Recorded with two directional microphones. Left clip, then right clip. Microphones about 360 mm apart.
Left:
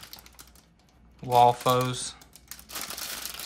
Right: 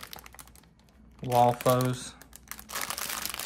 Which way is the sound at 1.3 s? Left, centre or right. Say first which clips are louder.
Left 3 dB; centre.